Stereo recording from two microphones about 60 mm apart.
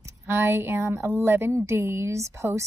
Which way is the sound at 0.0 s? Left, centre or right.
Right.